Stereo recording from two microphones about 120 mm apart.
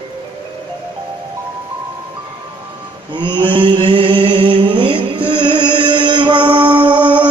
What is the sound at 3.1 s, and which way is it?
Mantra, 40° right (ahead or behind).